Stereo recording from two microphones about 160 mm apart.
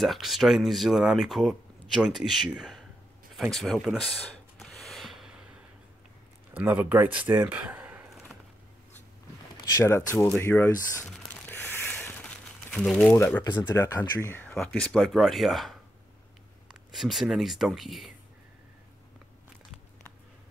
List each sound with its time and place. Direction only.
0.0 s speech: centre (ahead or behind)
4.6 s a sound: centre (ahead or behind)
6.5 s speech: 10° right (ahead or behind)
9.6 s speech: 20° left (ahead or behind)
11.1 s a sound: 5° left (ahead or behind)
12.7 s speech: 5° left (ahead or behind)
13.4 s speech: 25° left (ahead or behind); by 18.1 s centre (ahead or behind)